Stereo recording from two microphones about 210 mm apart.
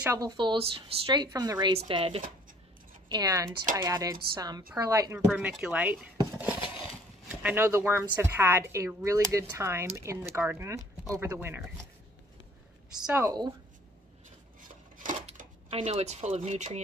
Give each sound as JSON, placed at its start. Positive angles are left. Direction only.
{"t": 0.0, "sound": "a woman's voice", "side_deg": -15}
{"t": 13.0, "sound": "a woman's voice", "side_deg": -5}
{"t": 13.3, "sound": "speech", "side_deg": -15}
{"t": 14.6, "sound": "dishes", "side_deg": -40}